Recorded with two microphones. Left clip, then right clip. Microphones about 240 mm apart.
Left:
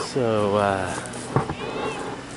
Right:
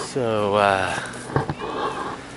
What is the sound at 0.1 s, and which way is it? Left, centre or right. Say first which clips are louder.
Speech: right 1 dB; centre.